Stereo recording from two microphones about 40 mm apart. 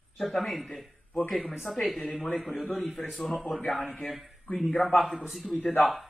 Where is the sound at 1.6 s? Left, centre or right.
Centre.